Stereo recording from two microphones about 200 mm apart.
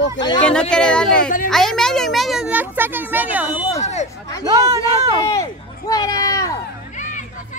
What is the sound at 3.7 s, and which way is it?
Speech, 35° left (ahead or behind).